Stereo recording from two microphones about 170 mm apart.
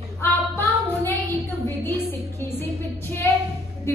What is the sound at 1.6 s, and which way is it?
Music, 15° left (ahead or behind).